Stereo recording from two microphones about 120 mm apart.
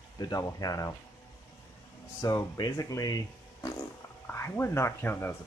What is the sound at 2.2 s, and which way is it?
Speech, 30° left (ahead or behind).